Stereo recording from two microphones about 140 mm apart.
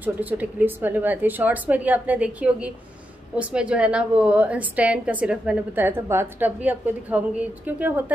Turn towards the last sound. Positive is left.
turn(degrees=-10)  # may be behind; listen again after turning